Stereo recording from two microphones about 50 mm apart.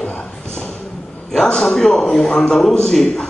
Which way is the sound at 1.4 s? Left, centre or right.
Centre.